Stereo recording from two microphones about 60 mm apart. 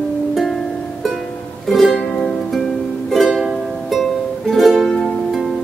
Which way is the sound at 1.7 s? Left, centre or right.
Centre.